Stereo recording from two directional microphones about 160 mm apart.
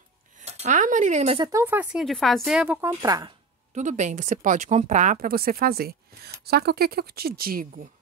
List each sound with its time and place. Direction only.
0.4 s speech: 45° right (ahead or behind)
1.4 s speech: 20° right (ahead or behind)
2.8 s speech: 20° right (ahead or behind)
3.7 s speech: 50° right (ahead or behind); by 6.3 s 70° right (ahead or behind)
6.4 s speech: 85° right; by 7.9 s 65° right (ahead or behind)